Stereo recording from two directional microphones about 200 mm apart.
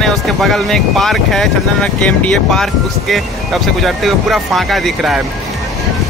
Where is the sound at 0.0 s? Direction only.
Centre (ahead or behind).